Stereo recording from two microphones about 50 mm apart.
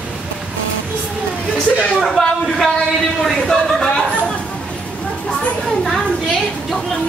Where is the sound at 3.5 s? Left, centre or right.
Centre.